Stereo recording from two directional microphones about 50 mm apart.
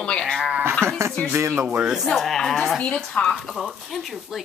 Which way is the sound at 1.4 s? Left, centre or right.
Right.